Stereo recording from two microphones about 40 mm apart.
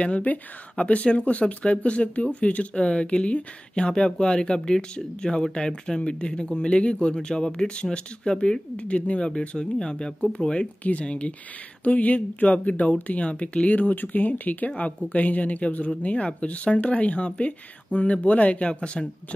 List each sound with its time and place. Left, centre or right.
0.0 s speech: left
1.4 s speech: left
9.8 s speech: left
10.8 s speech: left
11.8 s speech: left
13.7 s speech: left